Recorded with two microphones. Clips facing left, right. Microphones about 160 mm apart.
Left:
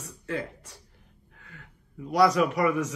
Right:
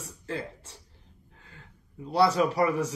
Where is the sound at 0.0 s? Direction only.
30° right (ahead or behind).